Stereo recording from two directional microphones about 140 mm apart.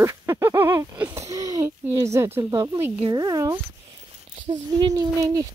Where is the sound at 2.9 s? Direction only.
30° right (ahead or behind).